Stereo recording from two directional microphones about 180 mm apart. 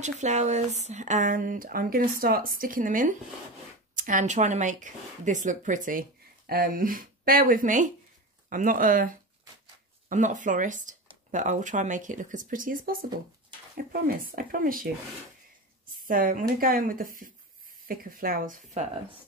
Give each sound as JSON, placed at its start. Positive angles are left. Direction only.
{"t": 0.0, "sound": "speech", "side_deg": -40}
{"t": 16.0, "sound": "speech", "side_deg": -50}